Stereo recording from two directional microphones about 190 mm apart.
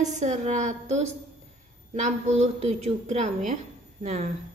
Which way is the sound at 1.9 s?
40° right (ahead or behind).